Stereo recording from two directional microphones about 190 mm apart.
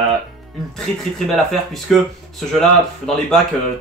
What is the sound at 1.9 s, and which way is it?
Speech, centre (ahead or behind).